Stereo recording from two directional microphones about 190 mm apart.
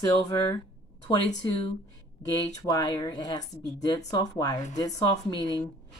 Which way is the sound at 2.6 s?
20° left (ahead or behind).